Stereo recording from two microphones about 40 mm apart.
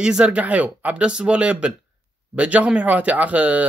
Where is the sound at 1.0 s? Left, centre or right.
Right.